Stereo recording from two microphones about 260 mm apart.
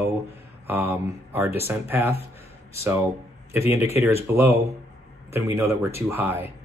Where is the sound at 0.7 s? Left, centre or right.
Centre.